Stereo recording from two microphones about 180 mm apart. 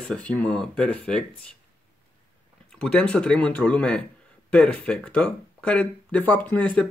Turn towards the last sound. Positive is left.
turn(degrees=5)  # may be behind; listen again after turning